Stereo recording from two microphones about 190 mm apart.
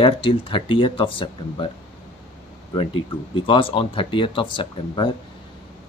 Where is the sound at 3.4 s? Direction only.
25° left (ahead or behind).